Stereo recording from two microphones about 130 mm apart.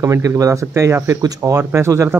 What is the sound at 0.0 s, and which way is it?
Speech, 25° right (ahead or behind).